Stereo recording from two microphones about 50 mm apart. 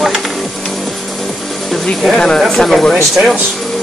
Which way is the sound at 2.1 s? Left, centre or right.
Centre.